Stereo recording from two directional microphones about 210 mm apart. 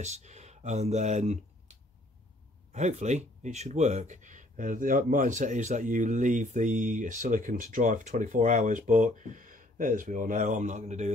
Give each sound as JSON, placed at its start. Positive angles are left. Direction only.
{"t": 0.0, "sound": "speech", "side_deg": -35}